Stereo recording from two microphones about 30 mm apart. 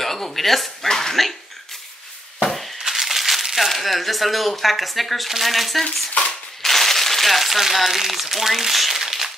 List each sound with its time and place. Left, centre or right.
0.0 s speech: centre
0.8 s speech: centre
2.9 s crumpling: centre
3.5 s speech: centre